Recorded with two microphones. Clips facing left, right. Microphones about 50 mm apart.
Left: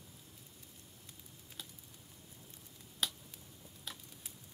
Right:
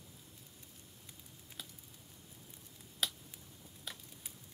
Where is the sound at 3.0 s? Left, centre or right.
Centre.